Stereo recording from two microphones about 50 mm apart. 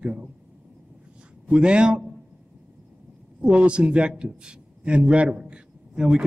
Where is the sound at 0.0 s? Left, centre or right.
Centre.